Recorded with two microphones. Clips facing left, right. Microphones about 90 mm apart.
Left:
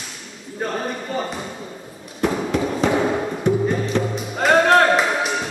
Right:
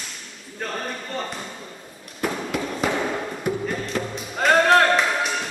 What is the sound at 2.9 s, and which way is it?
Music, 10° left (ahead or behind).